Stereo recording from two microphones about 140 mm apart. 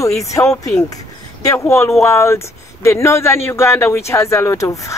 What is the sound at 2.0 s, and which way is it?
Speech, 20° left (ahead or behind).